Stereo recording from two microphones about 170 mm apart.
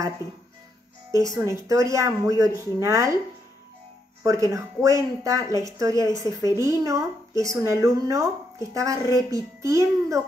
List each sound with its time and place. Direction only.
0.2 s speech: 20° left (ahead or behind)
1.1 s speech: 20° right (ahead or behind)
4.2 s speech: 20° right (ahead or behind)